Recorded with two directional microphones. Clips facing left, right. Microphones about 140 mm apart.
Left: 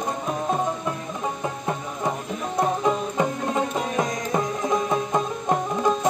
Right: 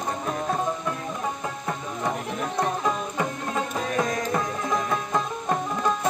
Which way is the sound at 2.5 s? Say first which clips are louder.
Left 4 dB; 20° left (ahead or behind).